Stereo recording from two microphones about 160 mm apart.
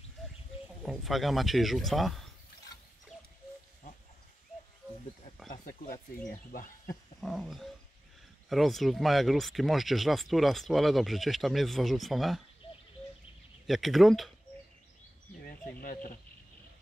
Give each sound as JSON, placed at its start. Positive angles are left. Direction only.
{"t": 0.8, "sound": "speech", "side_deg": 0}
{"t": 4.8, "sound": "wild animals", "side_deg": -15}
{"t": 5.5, "sound": "speech", "side_deg": 60}
{"t": 7.2, "sound": "speech", "side_deg": 0}
{"t": 13.7, "sound": "speech", "side_deg": 0}
{"t": 15.8, "sound": "speech", "side_deg": 60}